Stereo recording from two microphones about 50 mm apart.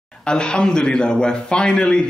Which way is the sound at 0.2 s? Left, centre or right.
Centre.